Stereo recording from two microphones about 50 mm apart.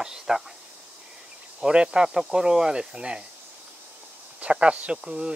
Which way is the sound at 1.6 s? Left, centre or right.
Centre.